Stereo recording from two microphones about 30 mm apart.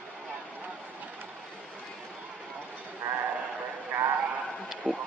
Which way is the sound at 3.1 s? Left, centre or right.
Right.